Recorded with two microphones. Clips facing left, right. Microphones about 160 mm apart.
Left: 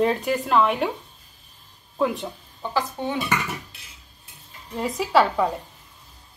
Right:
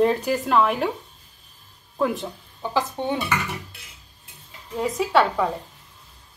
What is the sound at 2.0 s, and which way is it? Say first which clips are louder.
Speech: even; centre (ahead or behind).